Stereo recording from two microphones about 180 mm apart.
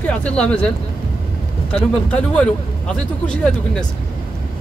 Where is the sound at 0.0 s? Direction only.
5° left (ahead or behind).